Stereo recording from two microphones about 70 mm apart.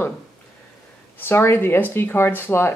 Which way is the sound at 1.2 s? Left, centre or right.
Left.